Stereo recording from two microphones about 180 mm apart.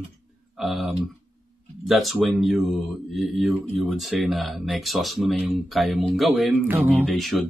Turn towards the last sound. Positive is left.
turn(degrees=0)  # may be behind; listen again after turning